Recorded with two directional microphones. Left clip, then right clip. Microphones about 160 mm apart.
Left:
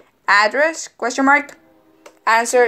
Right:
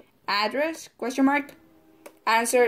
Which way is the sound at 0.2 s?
45° right (ahead or behind).